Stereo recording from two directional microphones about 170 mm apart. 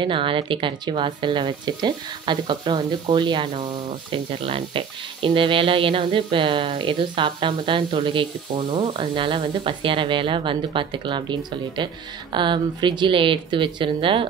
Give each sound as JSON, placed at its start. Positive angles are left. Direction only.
{"t": 0.0, "sound": "speech", "side_deg": -30}